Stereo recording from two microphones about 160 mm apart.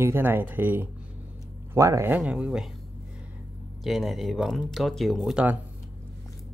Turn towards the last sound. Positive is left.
turn(degrees=-10)  # may be behind; listen again after turning